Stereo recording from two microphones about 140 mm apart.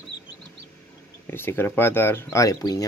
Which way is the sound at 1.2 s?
15° left (ahead or behind).